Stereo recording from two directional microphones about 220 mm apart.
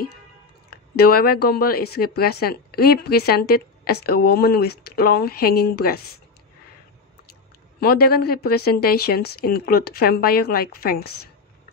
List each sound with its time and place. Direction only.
0.7 s speech: 45° left (ahead or behind)
7.8 s speech: 45° left (ahead or behind)